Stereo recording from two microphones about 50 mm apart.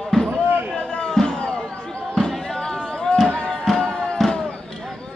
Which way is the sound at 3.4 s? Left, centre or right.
Centre.